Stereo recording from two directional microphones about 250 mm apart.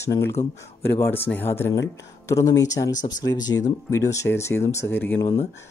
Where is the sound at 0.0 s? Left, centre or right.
Centre.